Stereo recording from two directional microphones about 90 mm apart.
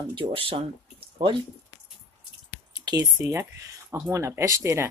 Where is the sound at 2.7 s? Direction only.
45° right (ahead or behind).